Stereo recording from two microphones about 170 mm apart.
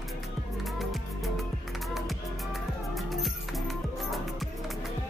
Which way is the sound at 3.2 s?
Centre (ahead or behind).